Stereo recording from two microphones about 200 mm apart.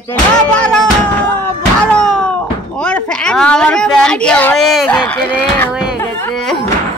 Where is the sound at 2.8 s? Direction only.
5° left (ahead or behind).